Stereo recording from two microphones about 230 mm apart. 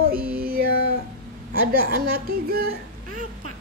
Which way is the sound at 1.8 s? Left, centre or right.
Right.